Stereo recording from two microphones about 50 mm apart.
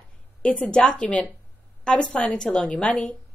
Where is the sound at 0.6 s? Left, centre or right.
Centre.